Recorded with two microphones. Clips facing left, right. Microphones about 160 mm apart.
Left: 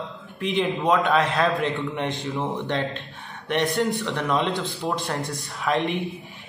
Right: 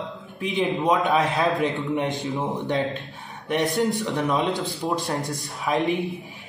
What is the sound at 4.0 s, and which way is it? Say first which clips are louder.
A man's voice: right 1 dB; 15° right (ahead or behind).